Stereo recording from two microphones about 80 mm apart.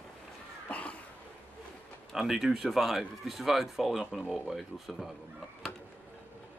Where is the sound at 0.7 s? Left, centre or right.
Centre.